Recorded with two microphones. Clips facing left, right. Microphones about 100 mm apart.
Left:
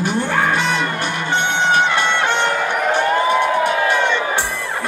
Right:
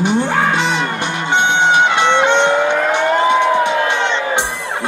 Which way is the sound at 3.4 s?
20° right (ahead or behind).